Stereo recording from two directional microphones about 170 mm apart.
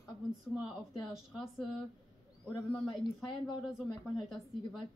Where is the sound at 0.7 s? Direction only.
Centre (ahead or behind).